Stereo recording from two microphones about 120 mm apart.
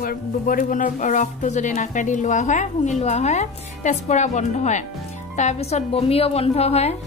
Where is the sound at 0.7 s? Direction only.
90° left.